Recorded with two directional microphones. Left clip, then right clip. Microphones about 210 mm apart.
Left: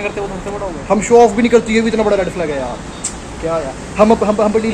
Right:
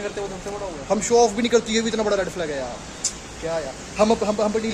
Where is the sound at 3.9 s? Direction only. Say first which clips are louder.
Left 8 dB; 5° right (ahead or behind).